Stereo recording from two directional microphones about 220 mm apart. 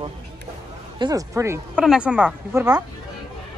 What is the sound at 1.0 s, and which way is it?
Speech, 15° right (ahead or behind).